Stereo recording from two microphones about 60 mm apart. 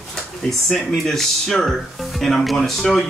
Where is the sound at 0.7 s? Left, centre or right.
Centre.